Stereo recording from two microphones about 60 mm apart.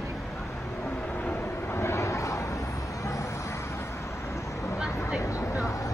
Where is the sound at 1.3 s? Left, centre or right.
Left.